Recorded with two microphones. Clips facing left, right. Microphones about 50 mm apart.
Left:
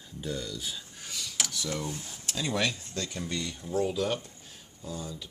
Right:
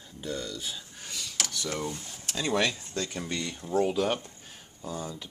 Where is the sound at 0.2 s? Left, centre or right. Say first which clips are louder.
Right 1 dB; centre.